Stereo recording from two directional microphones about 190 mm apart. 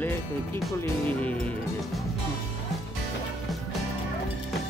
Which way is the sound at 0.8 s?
5° left (ahead or behind).